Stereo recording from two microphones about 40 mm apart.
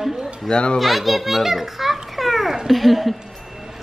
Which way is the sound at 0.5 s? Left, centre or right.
Left.